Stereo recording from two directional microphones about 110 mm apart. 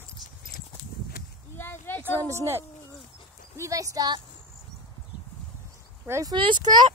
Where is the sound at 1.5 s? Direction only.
20° left (ahead or behind).